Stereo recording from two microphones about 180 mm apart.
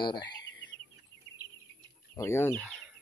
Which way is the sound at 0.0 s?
25° left (ahead or behind).